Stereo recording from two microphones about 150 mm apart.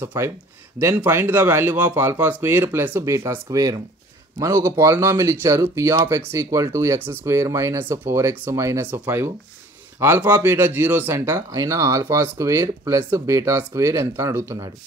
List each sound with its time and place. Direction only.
0.0 s speech: 15° right (ahead or behind)